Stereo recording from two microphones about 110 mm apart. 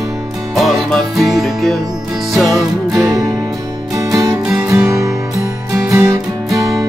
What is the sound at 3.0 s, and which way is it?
Music, 30° right (ahead or behind).